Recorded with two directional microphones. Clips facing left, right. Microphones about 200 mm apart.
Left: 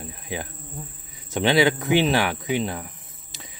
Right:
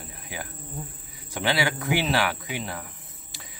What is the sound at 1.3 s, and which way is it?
Speech, 20° left (ahead or behind).